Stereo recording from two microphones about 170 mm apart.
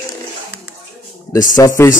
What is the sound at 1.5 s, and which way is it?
Speech, 20° left (ahead or behind).